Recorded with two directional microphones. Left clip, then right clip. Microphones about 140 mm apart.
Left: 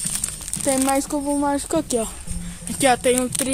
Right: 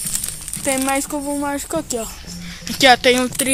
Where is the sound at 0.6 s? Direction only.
20° left (ahead or behind).